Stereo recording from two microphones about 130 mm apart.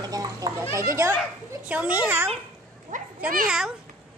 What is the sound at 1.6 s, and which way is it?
Speech, 10° right (ahead or behind).